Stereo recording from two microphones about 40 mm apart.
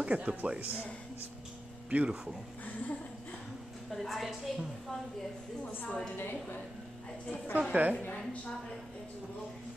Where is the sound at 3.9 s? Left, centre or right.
Centre.